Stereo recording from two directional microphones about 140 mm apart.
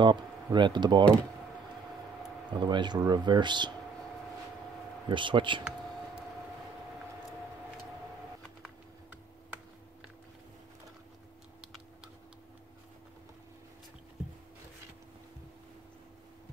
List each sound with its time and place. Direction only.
0.0 s speech: 35° right (ahead or behind)
2.6 s speech: 35° right (ahead or behind)
5.0 s speech: 35° right (ahead or behind)